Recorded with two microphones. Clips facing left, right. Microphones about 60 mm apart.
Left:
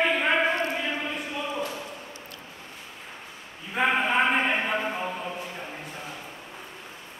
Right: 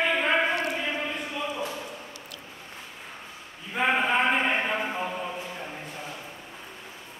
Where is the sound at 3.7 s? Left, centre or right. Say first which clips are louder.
Even; centre.